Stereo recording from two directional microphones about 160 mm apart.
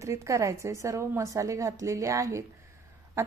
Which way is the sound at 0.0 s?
20° right (ahead or behind).